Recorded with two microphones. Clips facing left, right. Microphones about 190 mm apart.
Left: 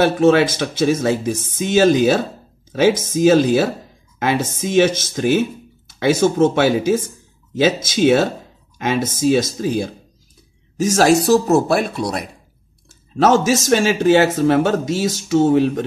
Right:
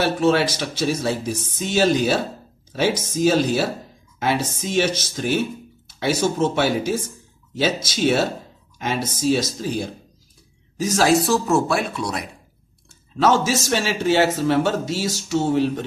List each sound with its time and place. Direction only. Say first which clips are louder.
0.0 s speech: left 5 dB; 50° left (ahead or behind)